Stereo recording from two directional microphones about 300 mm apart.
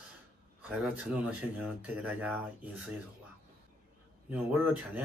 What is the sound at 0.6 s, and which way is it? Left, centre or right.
Speech, centre.